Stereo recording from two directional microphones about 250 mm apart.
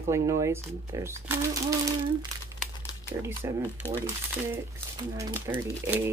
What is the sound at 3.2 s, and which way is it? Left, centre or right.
Speech, centre.